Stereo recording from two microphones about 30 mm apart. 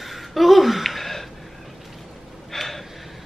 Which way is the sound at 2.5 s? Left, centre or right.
Centre.